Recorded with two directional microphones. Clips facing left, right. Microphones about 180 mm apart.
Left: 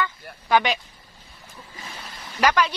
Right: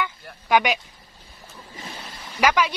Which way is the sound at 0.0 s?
15° right (ahead or behind).